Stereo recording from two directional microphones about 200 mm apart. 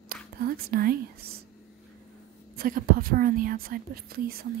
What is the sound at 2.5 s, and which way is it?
Speech, 45° right (ahead or behind).